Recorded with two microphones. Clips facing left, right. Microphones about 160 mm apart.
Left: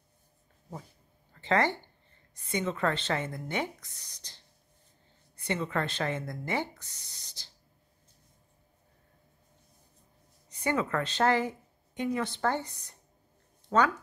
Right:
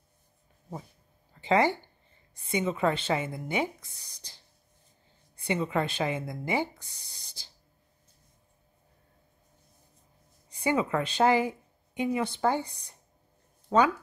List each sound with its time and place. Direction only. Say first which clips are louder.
1.3 s a sound: right 3 dB; 10° right (ahead or behind)
2.5 s speech: right 3 dB; 10° right (ahead or behind)
10.6 s speech: right 2 dB; 10° right (ahead or behind)